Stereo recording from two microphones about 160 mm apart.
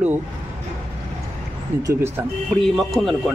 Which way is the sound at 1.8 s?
15° right (ahead or behind).